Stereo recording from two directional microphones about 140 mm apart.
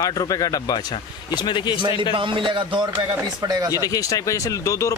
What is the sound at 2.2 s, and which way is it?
A man's voice, 35° right (ahead or behind).